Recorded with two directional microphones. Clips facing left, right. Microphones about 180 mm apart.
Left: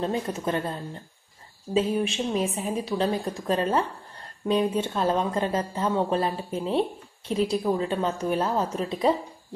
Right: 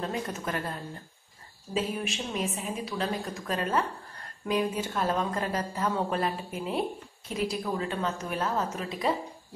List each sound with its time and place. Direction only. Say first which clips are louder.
0.0 s a woman's voice: left 5 dB; 30° left (ahead or behind)